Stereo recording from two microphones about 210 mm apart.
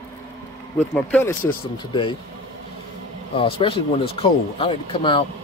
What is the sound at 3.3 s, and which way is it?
Speech, 25° left (ahead or behind).